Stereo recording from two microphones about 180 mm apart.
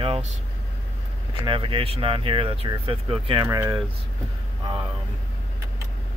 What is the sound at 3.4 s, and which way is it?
Speech, 15° right (ahead or behind).